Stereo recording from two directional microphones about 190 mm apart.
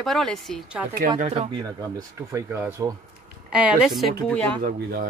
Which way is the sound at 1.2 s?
35° right (ahead or behind).